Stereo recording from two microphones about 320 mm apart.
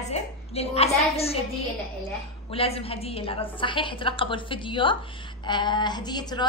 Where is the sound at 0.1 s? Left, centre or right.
Centre.